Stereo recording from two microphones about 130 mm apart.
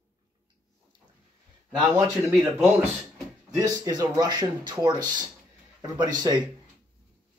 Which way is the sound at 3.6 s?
25° right (ahead or behind).